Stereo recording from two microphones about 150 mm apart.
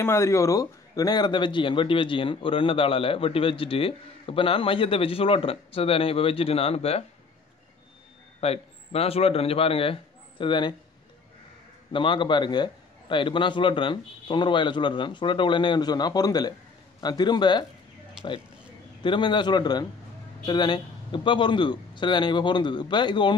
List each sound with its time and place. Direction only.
0.0 s speech: 20° left (ahead or behind); by 7.1 s 40° left (ahead or behind)
8.4 s a man's voice: 40° left (ahead or behind)
11.9 s a man's voice: 35° left (ahead or behind)
19.0 s speech: 30° left (ahead or behind)